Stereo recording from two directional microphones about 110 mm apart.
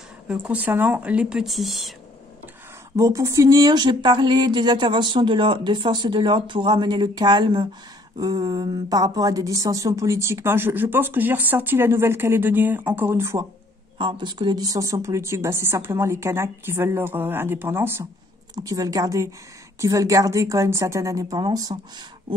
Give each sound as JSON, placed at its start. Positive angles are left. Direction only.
{"t": 0.3, "sound": "speech", "side_deg": -10}
{"t": 3.0, "sound": "a woman's voice", "side_deg": -30}
{"t": 13.9, "sound": "a woman's voice", "side_deg": -45}
{"t": 18.5, "sound": "a woman's voice", "side_deg": -35}